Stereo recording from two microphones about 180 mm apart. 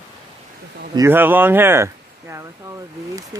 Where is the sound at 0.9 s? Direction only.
15° right (ahead or behind).